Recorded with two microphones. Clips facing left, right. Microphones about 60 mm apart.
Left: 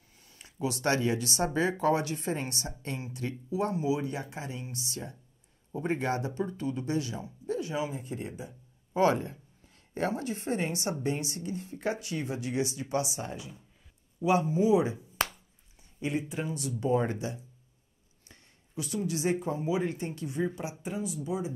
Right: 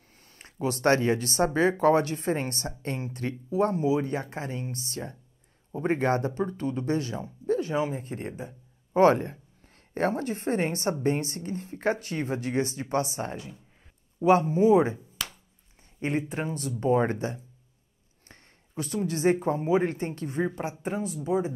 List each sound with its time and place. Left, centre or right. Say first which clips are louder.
0.2 s a woman's voice: right 3 dB; right
15.2 s chop: left 6 dB; left
16.0 s a woman's voice: right 3 dB; right
18.3 s a sound: right 2 dB; right
19.4 s a woman's voice: right 6 dB; right